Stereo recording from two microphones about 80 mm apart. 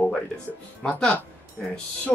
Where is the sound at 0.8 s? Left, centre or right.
Centre.